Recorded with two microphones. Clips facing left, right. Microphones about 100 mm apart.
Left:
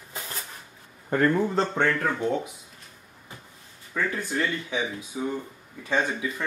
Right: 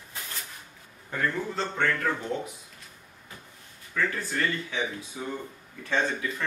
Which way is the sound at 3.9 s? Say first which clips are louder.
Left 1 dB; 15° left (ahead or behind).